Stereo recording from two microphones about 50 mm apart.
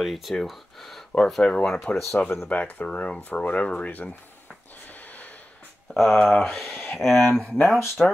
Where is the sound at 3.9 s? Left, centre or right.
Left.